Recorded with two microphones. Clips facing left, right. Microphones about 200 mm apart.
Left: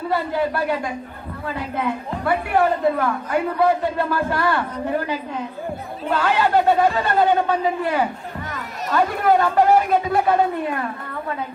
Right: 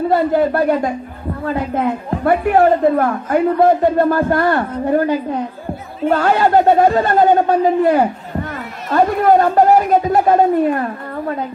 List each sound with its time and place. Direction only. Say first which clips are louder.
0.1 s a woman's voice: right 6 dB; 50° right (ahead or behind)